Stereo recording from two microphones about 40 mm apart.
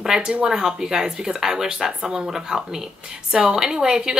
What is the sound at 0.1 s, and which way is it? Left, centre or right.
A woman's voice, centre.